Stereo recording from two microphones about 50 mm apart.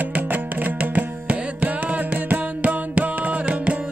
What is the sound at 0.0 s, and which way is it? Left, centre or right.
Music, right.